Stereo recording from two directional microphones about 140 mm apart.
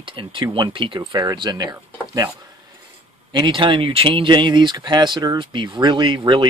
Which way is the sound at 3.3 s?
35° right (ahead or behind).